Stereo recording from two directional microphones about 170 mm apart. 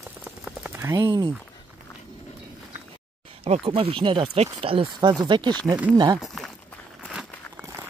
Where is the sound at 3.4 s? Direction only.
35° right (ahead or behind).